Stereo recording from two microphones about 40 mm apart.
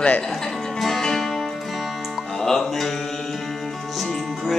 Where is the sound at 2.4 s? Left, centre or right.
Centre.